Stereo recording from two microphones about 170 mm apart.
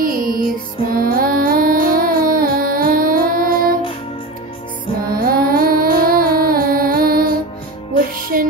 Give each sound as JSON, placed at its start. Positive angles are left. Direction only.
{"t": 0.0, "sound": "music", "side_deg": -55}
{"t": 5.0, "sound": "music", "side_deg": -60}